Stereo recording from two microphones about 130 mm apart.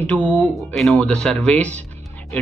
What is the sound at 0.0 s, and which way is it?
Speech, 10° left (ahead or behind).